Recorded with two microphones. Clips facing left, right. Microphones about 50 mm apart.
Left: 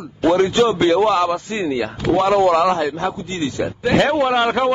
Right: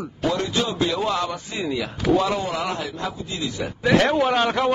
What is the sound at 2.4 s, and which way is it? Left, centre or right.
A man's voice, left.